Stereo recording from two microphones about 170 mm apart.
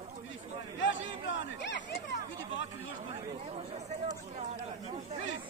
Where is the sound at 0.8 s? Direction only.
90° left.